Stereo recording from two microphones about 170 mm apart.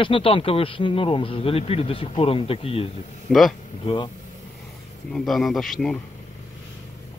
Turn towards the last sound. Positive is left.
turn(degrees=0)  # may be behind; listen again after turning